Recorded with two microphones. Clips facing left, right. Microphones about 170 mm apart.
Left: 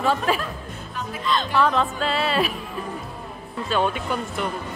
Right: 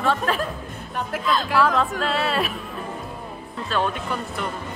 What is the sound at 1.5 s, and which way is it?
Speech, 5° right (ahead or behind).